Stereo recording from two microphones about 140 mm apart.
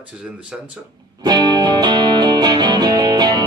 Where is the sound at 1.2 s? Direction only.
30° right (ahead or behind).